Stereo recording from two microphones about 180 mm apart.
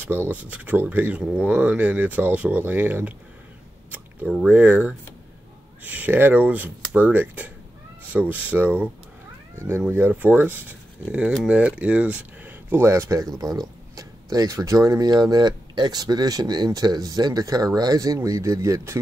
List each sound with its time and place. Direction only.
0.3 s speech: 10° right (ahead or behind)